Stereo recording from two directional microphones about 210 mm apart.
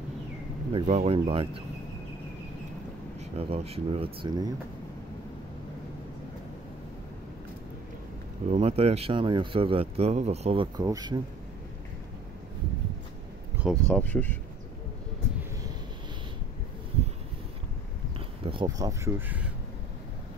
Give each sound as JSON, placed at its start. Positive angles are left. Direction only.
{"t": 0.7, "sound": "speech", "side_deg": -30}
{"t": 3.2, "sound": "speech", "side_deg": -30}
{"t": 8.5, "sound": "speech", "side_deg": -30}
{"t": 13.6, "sound": "speech", "side_deg": 0}
{"t": 18.4, "sound": "speech", "side_deg": -25}